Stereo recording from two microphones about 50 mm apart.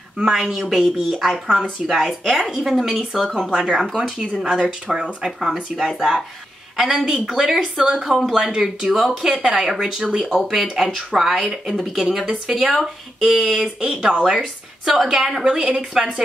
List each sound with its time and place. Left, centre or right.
0.2 s speech: centre
10.2 s speech: centre
15.4 s speech: centre